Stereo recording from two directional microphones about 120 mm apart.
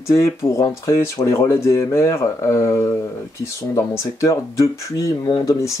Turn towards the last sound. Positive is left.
turn(degrees=30)  # may be behind; listen again after turning